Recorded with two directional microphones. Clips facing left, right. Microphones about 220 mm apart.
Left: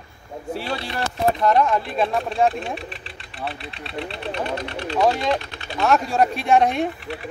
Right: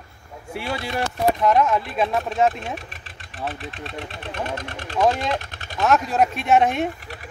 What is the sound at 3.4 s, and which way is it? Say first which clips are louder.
Speech: right 1 dB; 45° right (ahead or behind).